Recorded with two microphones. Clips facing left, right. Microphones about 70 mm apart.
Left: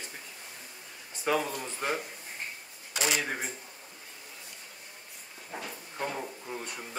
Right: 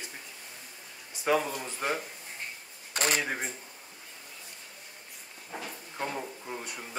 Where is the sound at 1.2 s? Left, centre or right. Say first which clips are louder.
Right 2 dB; centre.